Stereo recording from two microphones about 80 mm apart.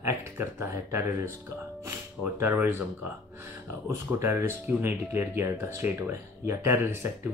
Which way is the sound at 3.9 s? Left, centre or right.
Right.